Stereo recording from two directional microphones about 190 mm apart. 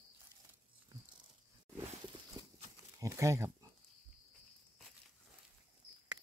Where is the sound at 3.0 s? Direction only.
15° right (ahead or behind).